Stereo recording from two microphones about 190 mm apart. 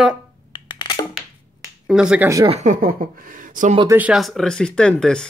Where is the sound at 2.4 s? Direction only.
35° right (ahead or behind).